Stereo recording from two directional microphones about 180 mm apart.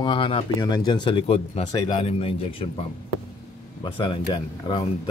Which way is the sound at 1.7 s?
20° left (ahead or behind).